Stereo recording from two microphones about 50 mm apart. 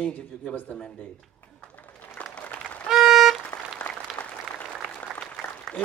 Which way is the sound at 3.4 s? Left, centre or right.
Left.